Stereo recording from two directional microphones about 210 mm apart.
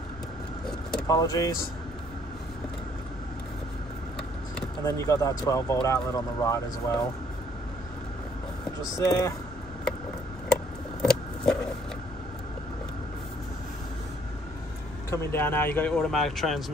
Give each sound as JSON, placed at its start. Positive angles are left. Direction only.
{"t": 1.0, "sound": "speech", "side_deg": 15}
{"t": 4.8, "sound": "speech", "side_deg": 15}
{"t": 9.0, "sound": "speech", "side_deg": 15}
{"t": 10.5, "sound": "vehicle", "side_deg": 5}
{"t": 15.0, "sound": "speech", "side_deg": 10}